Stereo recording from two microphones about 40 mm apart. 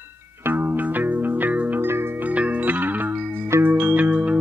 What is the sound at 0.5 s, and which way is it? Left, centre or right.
Music, right.